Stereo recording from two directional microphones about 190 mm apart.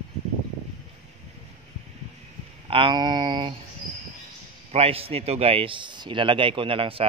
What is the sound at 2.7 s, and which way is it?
Speech, 25° right (ahead or behind).